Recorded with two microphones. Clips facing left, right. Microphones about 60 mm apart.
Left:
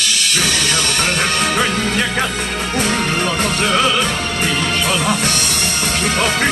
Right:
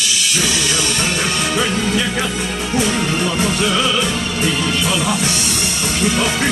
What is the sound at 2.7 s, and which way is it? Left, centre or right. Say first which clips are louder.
Music: right 1 dB; left.